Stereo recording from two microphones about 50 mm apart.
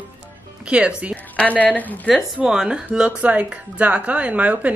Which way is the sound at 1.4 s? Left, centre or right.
Left.